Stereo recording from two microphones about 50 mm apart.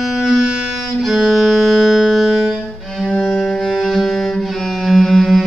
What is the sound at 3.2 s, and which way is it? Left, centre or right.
Music, centre.